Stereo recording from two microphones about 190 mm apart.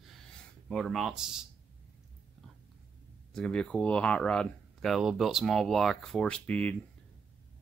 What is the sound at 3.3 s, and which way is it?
Speech, 5° left (ahead or behind).